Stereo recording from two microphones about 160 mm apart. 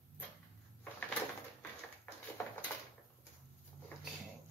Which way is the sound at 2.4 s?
15° left (ahead or behind).